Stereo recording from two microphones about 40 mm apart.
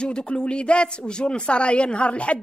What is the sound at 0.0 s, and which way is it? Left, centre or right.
Speech, left.